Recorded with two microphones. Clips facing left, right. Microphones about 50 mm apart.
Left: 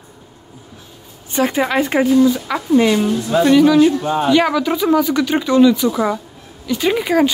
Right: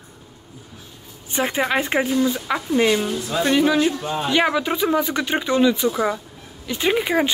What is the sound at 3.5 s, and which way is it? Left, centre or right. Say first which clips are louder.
Speech: left 7 dB; centre.